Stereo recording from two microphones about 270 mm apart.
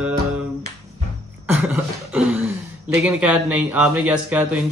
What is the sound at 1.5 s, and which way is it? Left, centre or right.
Cough, centre.